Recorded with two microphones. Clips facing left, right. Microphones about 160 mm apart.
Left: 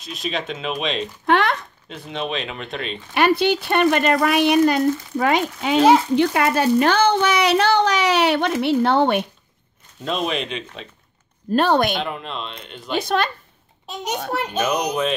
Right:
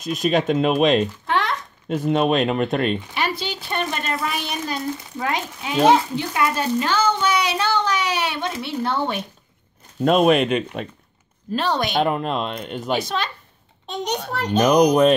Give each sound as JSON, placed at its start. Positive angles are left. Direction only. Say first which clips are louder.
{"t": 0.0, "sound": "speech", "louder": "right 7 dB", "side_deg": -45}
{"t": 1.2, "sound": "a sound", "louder": "left 4 dB", "side_deg": 65}
{"t": 1.9, "sound": "speech", "louder": "right 9 dB", "side_deg": -50}
{"t": 3.2, "sound": "speech", "louder": "left 8 dB", "side_deg": 60}
{"t": 10.0, "sound": "speech", "louder": "right 8 dB", "side_deg": -55}
{"t": 11.5, "sound": "speech", "louder": "left 4 dB", "side_deg": 55}
{"t": 12.0, "sound": "speech", "louder": "right 7 dB", "side_deg": -50}
{"t": 12.9, "sound": "speech", "louder": "left 3 dB", "side_deg": 55}
{"t": 14.3, "sound": "a child's voice", "louder": "right 4 dB", "side_deg": 5}
{"t": 14.8, "sound": "speech", "louder": "right 8 dB", "side_deg": -45}